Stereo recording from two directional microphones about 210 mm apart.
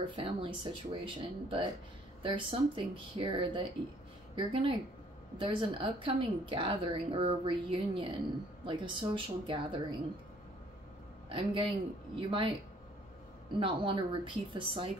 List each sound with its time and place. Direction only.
0.0 s a woman's voice: 25° right (ahead or behind)
11.2 s a man's voice: 25° right (ahead or behind)
13.6 s a woman's voice: 25° right (ahead or behind)